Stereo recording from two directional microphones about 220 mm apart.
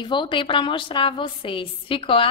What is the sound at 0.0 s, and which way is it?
A woman's voice, 20° left (ahead or behind).